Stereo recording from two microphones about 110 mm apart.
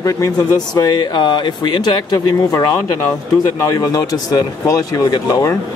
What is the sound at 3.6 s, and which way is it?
Speech, 30° left (ahead or behind).